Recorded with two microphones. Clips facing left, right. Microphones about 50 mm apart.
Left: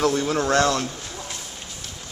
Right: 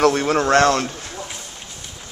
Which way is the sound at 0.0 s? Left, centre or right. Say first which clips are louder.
Right 5 dB; right.